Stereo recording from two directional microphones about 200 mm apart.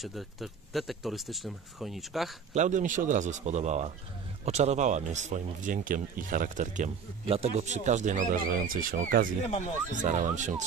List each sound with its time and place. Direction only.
0.0 s speech: centre (ahead or behind)
2.5 s speech: 35° right (ahead or behind)